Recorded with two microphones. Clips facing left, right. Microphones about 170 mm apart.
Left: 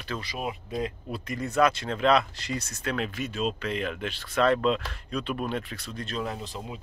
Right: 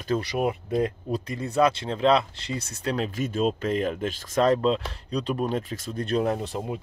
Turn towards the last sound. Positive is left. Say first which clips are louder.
# right 8 dB
turn(degrees=-45)  # may be behind; listen again after turning